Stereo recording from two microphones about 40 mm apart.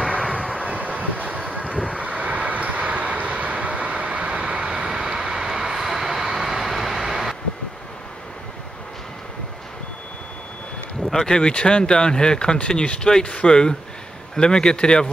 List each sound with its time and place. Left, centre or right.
0.3 s vehicle: left
0.7 s vehicle: right; by 7.3 s centre
11.1 s speech: centre